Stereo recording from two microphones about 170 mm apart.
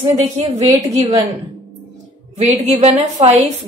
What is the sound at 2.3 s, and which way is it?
Speech, 40° right (ahead or behind).